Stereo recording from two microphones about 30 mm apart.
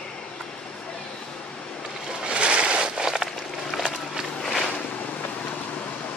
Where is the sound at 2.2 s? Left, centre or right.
Right.